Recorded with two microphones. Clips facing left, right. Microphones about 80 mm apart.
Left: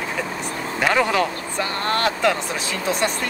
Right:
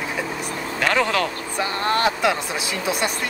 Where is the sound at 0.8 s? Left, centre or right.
Centre.